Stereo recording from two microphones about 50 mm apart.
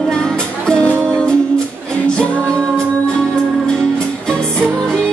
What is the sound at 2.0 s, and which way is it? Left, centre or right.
Music, centre.